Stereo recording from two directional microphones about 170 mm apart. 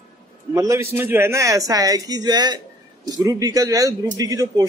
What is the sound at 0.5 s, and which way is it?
A man's voice, 15° right (ahead or behind).